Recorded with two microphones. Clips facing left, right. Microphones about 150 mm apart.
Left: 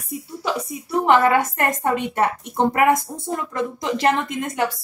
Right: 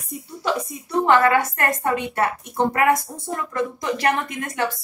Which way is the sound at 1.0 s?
15° left (ahead or behind).